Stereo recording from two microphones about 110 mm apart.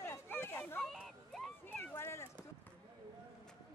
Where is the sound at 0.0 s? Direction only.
20° left (ahead or behind).